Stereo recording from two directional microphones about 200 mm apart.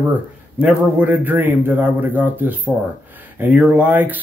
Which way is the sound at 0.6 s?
5° right (ahead or behind).